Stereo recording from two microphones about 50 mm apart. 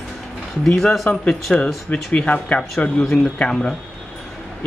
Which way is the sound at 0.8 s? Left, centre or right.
Centre.